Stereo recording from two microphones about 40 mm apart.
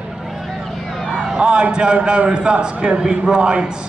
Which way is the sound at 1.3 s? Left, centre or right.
Right.